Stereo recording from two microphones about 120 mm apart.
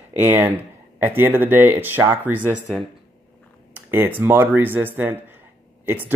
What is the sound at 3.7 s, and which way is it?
Speech, 15° right (ahead or behind).